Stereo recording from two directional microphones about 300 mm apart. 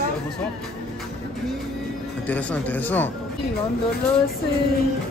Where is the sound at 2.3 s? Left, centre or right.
Centre.